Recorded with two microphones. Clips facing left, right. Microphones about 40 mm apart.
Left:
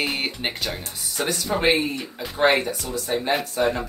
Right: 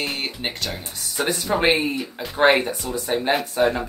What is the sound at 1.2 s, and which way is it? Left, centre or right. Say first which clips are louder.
Speech: right 2 dB; centre.